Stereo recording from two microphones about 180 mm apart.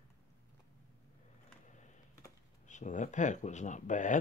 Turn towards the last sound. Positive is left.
turn(degrees=45)  # may be behind; listen again after turning